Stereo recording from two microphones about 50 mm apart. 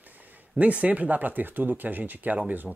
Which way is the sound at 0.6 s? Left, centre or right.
Right.